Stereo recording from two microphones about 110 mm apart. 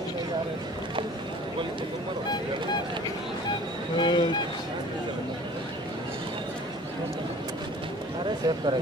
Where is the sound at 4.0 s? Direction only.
45° left (ahead or behind).